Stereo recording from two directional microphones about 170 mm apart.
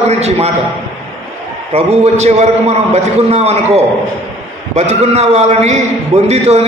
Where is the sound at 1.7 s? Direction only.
40° right (ahead or behind).